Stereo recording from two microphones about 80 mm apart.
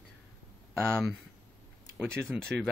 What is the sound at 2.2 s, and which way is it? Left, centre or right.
Speech, centre.